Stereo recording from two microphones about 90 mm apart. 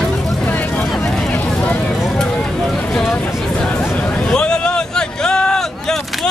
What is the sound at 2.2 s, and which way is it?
Vehicle, 5° left (ahead or behind).